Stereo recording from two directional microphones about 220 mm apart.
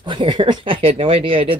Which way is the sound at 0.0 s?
20° right (ahead or behind).